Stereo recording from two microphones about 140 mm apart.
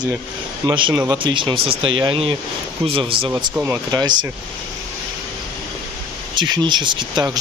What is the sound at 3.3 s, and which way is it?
Speech, 15° right (ahead or behind).